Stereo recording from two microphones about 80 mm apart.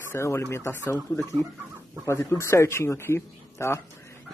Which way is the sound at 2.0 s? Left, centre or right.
Left.